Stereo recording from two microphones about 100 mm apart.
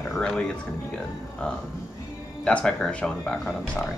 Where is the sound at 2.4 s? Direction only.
10° left (ahead or behind).